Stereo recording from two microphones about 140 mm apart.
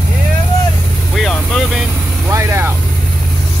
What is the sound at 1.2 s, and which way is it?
Speech, centre (ahead or behind).